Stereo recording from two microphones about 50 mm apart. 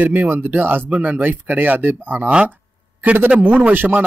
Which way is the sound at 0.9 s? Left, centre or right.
Right.